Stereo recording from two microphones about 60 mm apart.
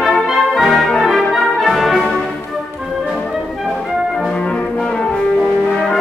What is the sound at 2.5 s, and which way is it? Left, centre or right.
Music, centre.